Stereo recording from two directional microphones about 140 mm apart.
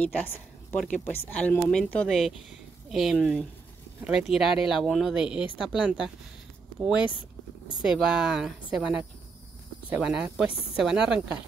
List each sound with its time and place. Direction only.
0.0 s a woman's voice: 10° left (ahead or behind); by 5.4 s 5° right (ahead or behind)
5.4 s a woman's voice: 35° left (ahead or behind)
5.7 s speech: 5° right (ahead or behind)
7.8 s speech: 5° right (ahead or behind)